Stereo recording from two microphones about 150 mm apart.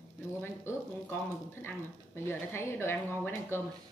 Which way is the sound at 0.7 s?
15° left (ahead or behind).